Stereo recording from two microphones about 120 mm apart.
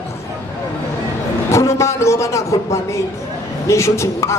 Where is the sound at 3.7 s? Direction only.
25° left (ahead or behind).